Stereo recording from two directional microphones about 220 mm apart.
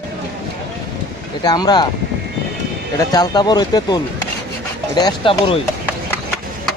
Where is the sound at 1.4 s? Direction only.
20° left (ahead or behind).